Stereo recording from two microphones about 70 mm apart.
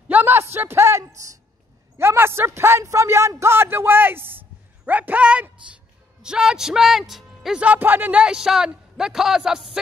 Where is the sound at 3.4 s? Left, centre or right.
Right; by 5.5 s centre.